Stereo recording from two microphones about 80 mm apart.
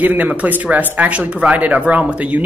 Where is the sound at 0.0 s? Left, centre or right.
Centre.